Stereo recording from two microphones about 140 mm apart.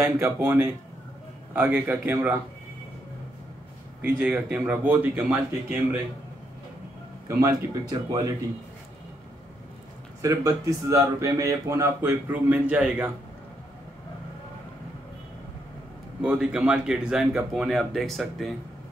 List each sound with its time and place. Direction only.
0.0 s speech: 15° right (ahead or behind)
4.2 s speech: 10° right (ahead or behind)
7.2 s speech: 25° right (ahead or behind)
10.2 s speech: 20° right (ahead or behind)
16.2 s a man's voice: 5° right (ahead or behind)